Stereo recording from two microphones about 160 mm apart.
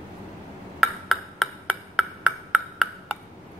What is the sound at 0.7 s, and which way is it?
Ping, centre (ahead or behind).